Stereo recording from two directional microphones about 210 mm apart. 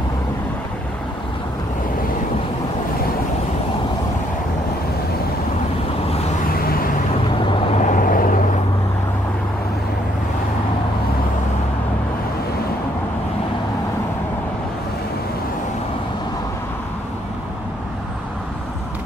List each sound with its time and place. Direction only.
7.7 s vehicle: 35° left (ahead or behind)